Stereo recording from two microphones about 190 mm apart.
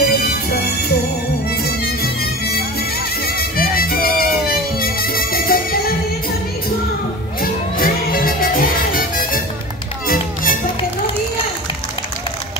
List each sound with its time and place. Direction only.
0.0 s music: 55° left (ahead or behind)
3.3 s music: 50° left (ahead or behind)
7.8 s music: 50° left (ahead or behind)